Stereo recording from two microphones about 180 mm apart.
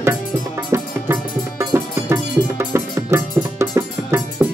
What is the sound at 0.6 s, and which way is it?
Music, 15° right (ahead or behind).